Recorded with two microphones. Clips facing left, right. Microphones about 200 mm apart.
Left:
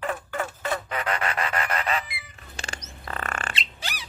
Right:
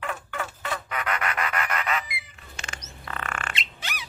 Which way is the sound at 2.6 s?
35° left (ahead or behind).